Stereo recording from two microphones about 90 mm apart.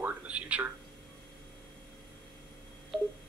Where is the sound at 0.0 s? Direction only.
15° right (ahead or behind).